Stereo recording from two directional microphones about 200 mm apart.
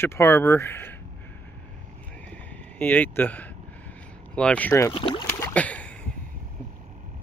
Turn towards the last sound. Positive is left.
turn(degrees=5)  # may be behind; listen again after turning